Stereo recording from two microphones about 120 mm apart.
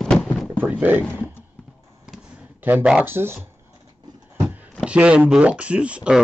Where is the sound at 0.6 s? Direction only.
15° right (ahead or behind).